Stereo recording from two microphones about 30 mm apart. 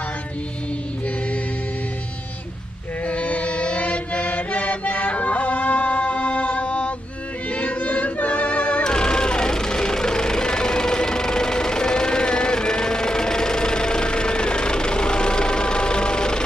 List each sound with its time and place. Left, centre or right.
3.1 s music: left
7.5 s choir: left
8.8 s music: left